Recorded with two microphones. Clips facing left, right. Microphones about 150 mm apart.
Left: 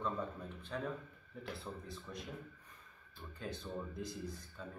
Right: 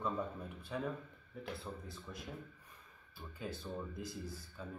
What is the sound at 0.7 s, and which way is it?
Speech, 5° right (ahead or behind).